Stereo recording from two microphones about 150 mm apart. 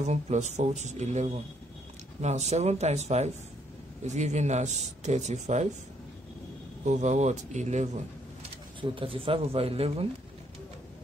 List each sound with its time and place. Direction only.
0.0 s speech: 50° right (ahead or behind)
6.8 s speech: 55° right (ahead or behind)
8.8 s speech: 35° right (ahead or behind)